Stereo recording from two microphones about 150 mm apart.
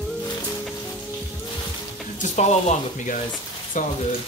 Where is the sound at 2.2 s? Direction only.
50° left (ahead or behind).